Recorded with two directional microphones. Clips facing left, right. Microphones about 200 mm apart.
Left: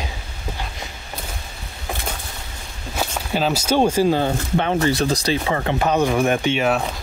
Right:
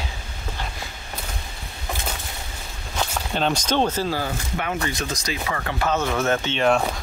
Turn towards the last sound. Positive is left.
turn(degrees=10)  # may be behind; listen again after turning